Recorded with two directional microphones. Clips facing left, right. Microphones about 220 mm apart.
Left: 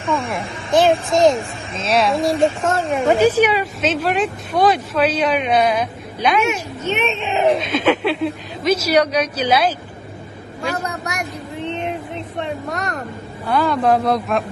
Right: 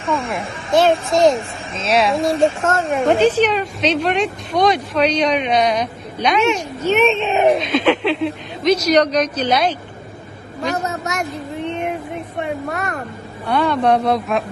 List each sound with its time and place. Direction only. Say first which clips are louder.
0.1 s a woman's voice: even; centre (ahead or behind)
6.4 s a woman's voice: right 3 dB; 30° right (ahead or behind)
7.5 s a woman's voice: right 1 dB; centre (ahead or behind)
10.8 s a woman's voice: right 3 dB; 25° right (ahead or behind)
12.7 s a woman's voice: even; centre (ahead or behind)